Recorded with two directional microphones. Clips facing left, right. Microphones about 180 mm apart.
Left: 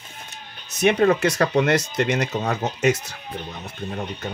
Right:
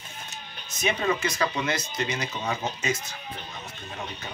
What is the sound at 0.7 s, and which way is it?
Speech, 70° left (ahead or behind).